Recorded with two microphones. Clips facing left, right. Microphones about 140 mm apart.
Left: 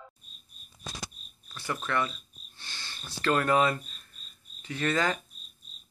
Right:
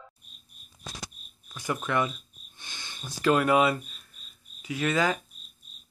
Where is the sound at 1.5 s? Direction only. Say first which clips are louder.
Right 3 dB; 15° right (ahead or behind).